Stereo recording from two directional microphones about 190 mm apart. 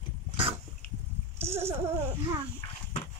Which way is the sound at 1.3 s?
15° right (ahead or behind).